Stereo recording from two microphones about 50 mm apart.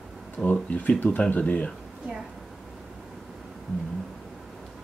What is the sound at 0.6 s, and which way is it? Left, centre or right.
Speech, left.